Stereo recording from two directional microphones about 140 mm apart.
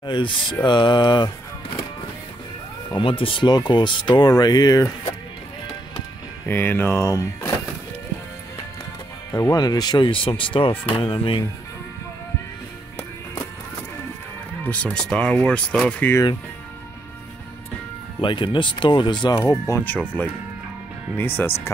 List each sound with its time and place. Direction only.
0.0 s speech: 35° left (ahead or behind)
3.0 s speech: 40° left (ahead or behind)
6.4 s speech: 15° left (ahead or behind)
9.3 s speech: 25° left (ahead or behind)
14.6 s speech: 10° left (ahead or behind)
18.2 s speech: 35° left (ahead or behind)
19.7 s speech: 10° left (ahead or behind)
21.2 s speech: 15° left (ahead or behind)